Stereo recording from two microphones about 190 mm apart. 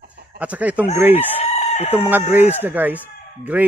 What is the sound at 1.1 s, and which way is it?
Chicken, 35° left (ahead or behind).